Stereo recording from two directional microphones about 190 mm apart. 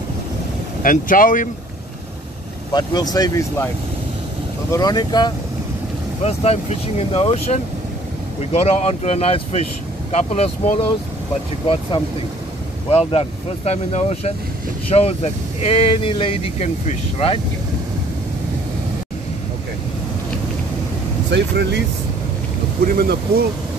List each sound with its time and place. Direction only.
0.8 s speech: 45° left (ahead or behind)
2.7 s speech: 20° left (ahead or behind)
6.2 s speech: 35° left (ahead or behind)
12.9 s speech: 30° left (ahead or behind)
21.3 s speech: 65° right (ahead or behind)
22.8 s speech: 50° right (ahead or behind)